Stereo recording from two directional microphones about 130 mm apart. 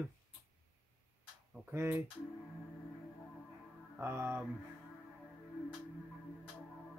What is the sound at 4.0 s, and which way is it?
Speech, 20° right (ahead or behind).